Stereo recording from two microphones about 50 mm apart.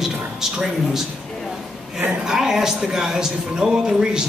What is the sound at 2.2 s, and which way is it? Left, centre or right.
Speech, centre.